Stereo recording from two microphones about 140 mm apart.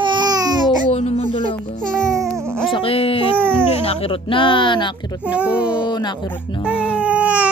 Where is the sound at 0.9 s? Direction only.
50° left (ahead or behind).